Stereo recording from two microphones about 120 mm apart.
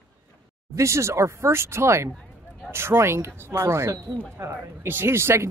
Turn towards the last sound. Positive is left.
turn(degrees=-20)  # may be behind; listen again after turning